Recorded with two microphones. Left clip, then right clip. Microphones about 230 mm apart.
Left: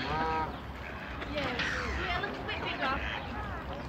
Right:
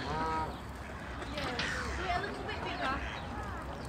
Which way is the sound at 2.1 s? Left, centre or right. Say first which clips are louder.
Left 1 dB; left.